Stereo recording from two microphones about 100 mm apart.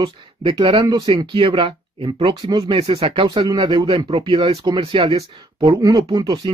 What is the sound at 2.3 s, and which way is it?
Speech, 50° right (ahead or behind).